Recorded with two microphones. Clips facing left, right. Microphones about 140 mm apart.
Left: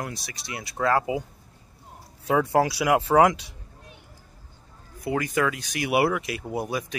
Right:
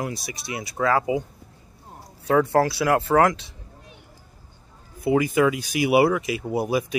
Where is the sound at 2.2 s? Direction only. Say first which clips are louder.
Right 2 dB; 10° left (ahead or behind).